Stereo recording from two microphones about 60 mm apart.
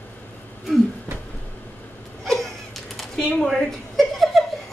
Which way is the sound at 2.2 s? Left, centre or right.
Centre.